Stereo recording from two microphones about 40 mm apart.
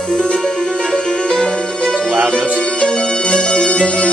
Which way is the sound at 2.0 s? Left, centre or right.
Right.